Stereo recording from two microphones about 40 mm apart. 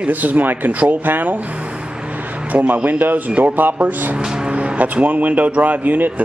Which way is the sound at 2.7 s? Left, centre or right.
Right.